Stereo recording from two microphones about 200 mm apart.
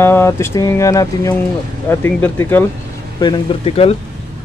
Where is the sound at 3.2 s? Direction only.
20° left (ahead or behind).